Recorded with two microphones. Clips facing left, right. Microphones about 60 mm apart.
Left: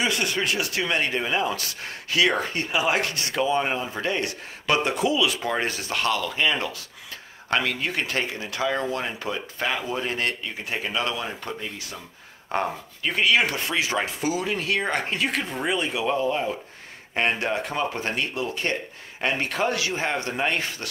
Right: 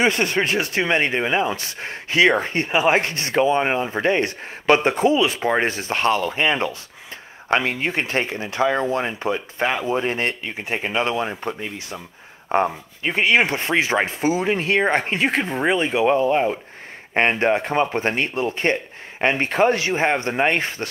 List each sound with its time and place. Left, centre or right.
0.0 s speech: right